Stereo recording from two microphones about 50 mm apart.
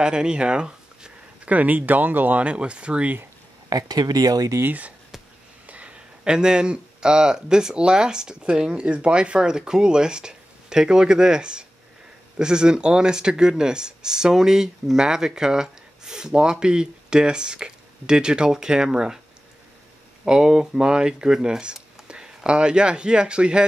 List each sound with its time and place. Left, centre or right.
0.0 s speech: centre; by 2.4 s right
2.4 s speech: right
4.6 s speech: right
5.7 s a sound: right
6.2 s speech: centre
20.2 s speech: centre